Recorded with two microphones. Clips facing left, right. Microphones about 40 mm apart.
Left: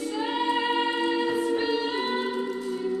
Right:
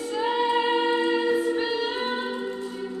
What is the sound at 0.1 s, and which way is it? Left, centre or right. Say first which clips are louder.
Music: right 4 dB; centre.